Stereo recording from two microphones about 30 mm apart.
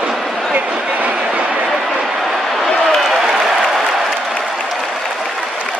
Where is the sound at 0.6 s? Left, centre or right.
Right.